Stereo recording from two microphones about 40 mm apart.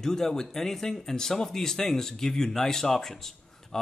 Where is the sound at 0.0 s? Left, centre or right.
Centre.